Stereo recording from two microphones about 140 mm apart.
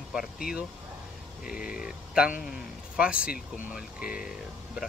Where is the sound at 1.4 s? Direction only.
90° left.